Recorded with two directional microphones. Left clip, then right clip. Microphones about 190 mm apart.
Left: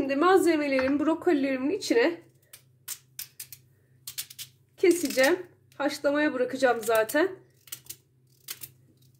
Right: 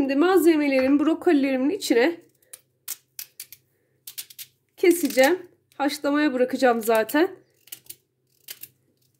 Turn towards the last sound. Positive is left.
turn(degrees=-20)  # may be behind; listen again after turning